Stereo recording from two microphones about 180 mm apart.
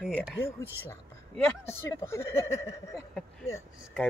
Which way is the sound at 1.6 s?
15° left (ahead or behind).